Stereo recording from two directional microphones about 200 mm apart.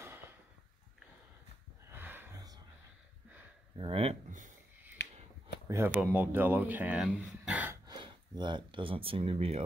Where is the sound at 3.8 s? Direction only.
30° right (ahead or behind).